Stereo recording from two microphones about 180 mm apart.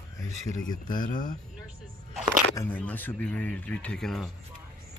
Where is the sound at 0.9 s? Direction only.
50° left (ahead or behind).